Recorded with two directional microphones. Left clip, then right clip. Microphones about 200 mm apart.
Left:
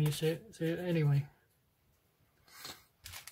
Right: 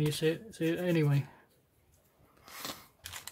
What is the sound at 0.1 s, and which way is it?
Speech, 20° right (ahead or behind).